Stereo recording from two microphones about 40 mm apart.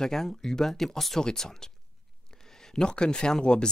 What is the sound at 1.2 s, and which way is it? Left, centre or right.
Speech, centre.